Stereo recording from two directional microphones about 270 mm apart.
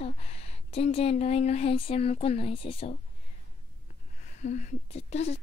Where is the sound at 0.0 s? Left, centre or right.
Left.